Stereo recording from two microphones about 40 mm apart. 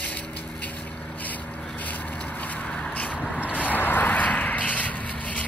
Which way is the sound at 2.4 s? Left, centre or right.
Left.